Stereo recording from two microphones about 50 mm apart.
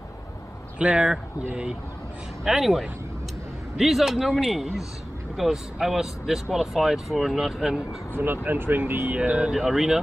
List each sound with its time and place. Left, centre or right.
0.7 s speech: right
2.4 s speech: centre
3.7 s speech: centre
8.2 s speech: right
9.1 s speech: right
9.6 s speech: centre